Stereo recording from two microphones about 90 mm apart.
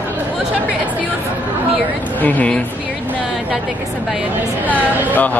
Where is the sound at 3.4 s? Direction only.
15° right (ahead or behind).